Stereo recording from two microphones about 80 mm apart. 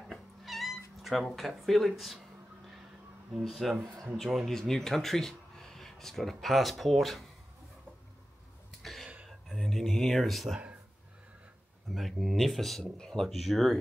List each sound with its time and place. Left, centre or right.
0.1 s cat: centre
3.4 s speech: centre
8.8 s a sound: centre
11.9 s speech: centre